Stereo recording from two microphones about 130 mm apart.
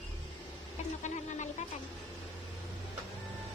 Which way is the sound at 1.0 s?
65° left (ahead or behind).